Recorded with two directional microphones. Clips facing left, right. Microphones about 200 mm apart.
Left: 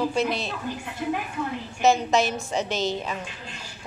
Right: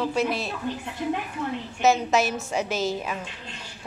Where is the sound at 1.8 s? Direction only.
5° right (ahead or behind).